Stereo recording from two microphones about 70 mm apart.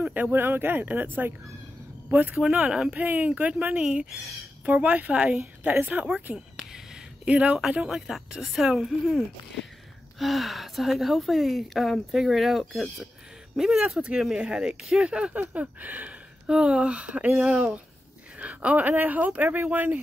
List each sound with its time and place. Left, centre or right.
0.0 s speech: right
2.3 s speech: centre
3.0 s speech: right
3.8 s a woman's voice: centre
4.7 s speech: right
6.3 s a sound: centre
7.2 s speech: centre
8.1 s a woman's voice: centre; by 20.0 s right